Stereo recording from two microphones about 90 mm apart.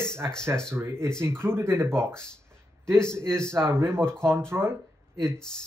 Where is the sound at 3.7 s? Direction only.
30° right (ahead or behind).